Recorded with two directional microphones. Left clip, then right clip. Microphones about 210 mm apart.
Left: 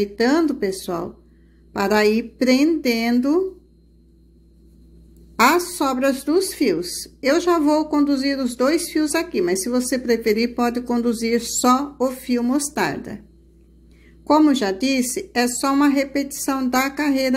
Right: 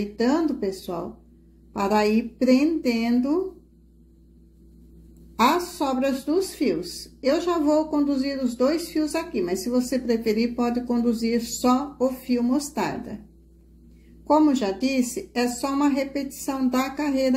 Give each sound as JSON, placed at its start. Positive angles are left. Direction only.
{"t": 0.0, "sound": "speech", "side_deg": 30}
{"t": 5.4, "sound": "speech", "side_deg": 30}
{"t": 14.2, "sound": "speech", "side_deg": 30}